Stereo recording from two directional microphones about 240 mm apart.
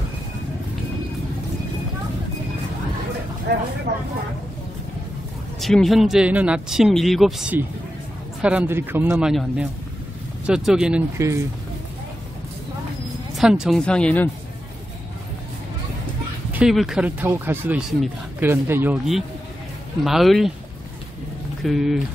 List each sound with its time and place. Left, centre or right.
3.5 s vehicle: right
5.6 s speech: centre
13.4 s speech: centre
16.5 s speech: centre
21.6 s speech: centre